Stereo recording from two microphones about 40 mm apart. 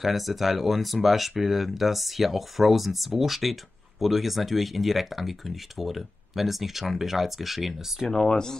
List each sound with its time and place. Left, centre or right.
0.0 s speech: centre
8.1 s speech: centre